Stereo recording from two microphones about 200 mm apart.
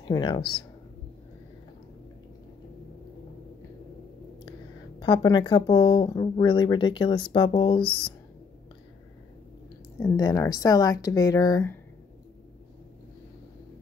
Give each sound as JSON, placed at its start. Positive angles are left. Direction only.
{"t": 0.0, "sound": "speech", "side_deg": 25}
{"t": 5.0, "sound": "speech", "side_deg": 20}
{"t": 10.0, "sound": "speech", "side_deg": 15}